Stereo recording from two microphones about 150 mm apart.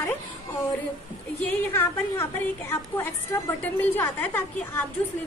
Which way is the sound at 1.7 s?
15° left (ahead or behind).